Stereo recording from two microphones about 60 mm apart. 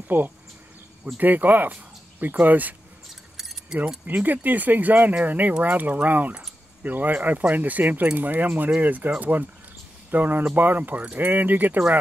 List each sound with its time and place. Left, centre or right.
0.1 s speech: right
4.1 s speech: right